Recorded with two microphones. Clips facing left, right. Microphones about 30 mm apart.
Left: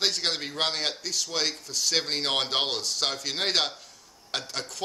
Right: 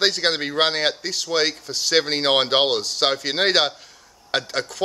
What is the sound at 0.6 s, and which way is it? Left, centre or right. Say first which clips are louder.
Speech: right 5 dB; right.